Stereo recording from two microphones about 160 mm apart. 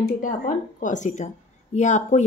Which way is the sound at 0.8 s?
50° left (ahead or behind).